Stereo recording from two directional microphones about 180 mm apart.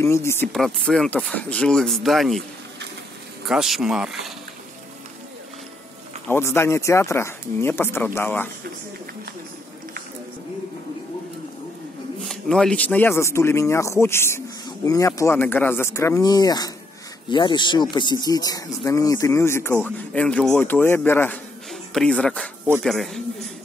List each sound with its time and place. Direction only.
0.0 s speech: 15° left (ahead or behind)
0.5 s speech: 5° left (ahead or behind)
3.4 s speech: centre (ahead or behind)
6.2 s speech: 15° left (ahead or behind)
12.3 s speech: 5° left (ahead or behind)